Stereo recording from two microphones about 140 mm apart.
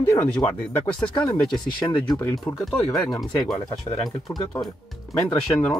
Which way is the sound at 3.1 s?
25° left (ahead or behind).